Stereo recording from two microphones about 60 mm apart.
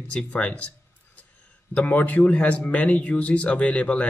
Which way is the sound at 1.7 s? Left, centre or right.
Left.